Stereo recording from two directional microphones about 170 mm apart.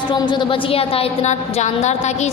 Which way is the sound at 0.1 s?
25° left (ahead or behind).